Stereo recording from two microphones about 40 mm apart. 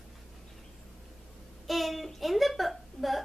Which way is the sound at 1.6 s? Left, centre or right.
Centre.